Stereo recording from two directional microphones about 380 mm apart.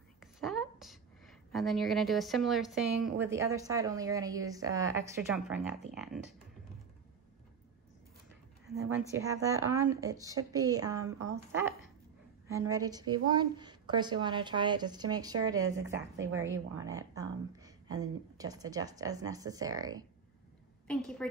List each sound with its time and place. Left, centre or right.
0.2 s a sound: centre
3.5 s speech: centre
8.7 s a woman's voice: right
9.4 s speech: centre
16.2 s a woman's voice: right
16.4 s speech: centre
21.2 s a woman's voice: centre